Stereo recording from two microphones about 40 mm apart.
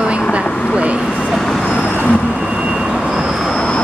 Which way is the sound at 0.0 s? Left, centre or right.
Right.